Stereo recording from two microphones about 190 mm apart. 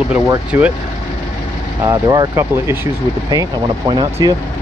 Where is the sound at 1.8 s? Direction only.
15° right (ahead or behind).